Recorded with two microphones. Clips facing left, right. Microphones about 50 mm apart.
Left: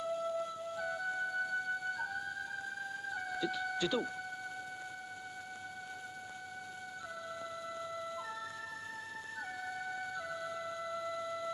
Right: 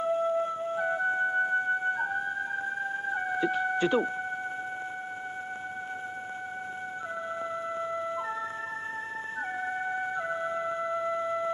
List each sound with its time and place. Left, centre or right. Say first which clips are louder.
0.0 s music: right 9 dB; right
7.9 s emergency vehicle: right 9 dB; right
9.7 s music: right 9 dB; right